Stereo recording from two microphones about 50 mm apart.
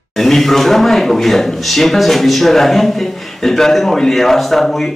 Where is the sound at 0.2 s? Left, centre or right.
Centre.